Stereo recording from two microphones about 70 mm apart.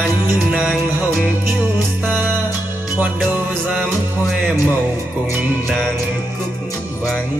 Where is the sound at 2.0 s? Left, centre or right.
Right.